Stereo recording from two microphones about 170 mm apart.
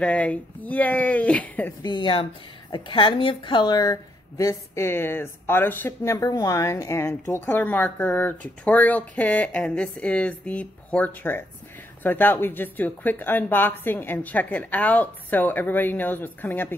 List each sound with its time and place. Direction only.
0.0 s a woman's voice: 10° left (ahead or behind)
1.8 s a woman's voice: 25° left (ahead or behind); by 16.7 s 10° left (ahead or behind)